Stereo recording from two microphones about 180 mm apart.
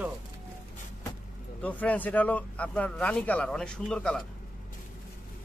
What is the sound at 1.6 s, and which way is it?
Speech, 10° left (ahead or behind).